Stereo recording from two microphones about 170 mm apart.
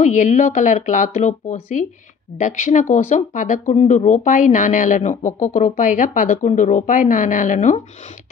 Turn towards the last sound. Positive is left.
turn(degrees=50)  # may be behind; listen again after turning